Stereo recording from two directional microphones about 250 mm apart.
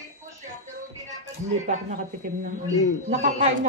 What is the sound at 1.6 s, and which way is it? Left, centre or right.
Speech, right.